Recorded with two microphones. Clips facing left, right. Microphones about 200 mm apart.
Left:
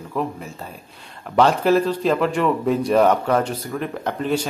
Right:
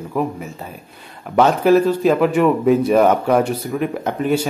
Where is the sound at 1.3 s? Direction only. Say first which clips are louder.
Right 3 dB; 5° right (ahead or behind).